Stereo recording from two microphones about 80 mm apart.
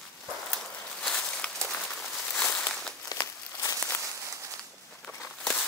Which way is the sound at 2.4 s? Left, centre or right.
Left.